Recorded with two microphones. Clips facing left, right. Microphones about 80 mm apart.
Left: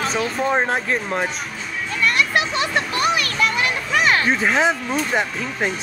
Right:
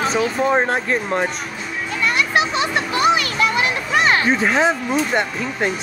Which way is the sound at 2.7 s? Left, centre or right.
Centre.